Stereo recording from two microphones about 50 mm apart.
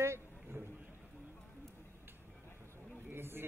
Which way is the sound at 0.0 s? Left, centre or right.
Right.